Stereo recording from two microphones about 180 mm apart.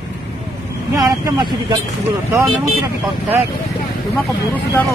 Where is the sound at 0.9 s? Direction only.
20° right (ahead or behind).